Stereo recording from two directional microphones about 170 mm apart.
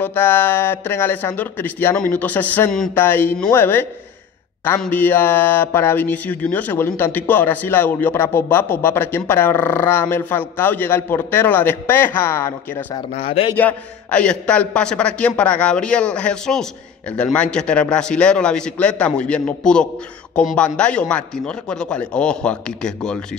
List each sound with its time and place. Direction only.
0.0 s speech: 10° left (ahead or behind)
13.1 s speech: 35° left (ahead or behind)
13.6 s a man's voice: 10° left (ahead or behind)